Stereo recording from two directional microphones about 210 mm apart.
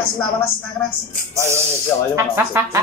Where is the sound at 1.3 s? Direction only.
15° right (ahead or behind).